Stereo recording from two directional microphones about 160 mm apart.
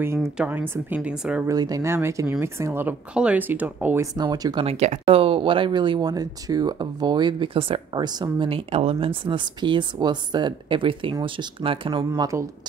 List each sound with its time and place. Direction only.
0.5 s speech: 10° right (ahead or behind)
1.5 s speech: 20° right (ahead or behind)
4.2 s speech: 25° right (ahead or behind)
4.6 s speech: 40° right (ahead or behind)
12.1 s speech: 20° right (ahead or behind)